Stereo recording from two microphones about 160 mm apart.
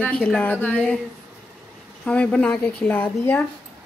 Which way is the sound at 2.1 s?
5° left (ahead or behind).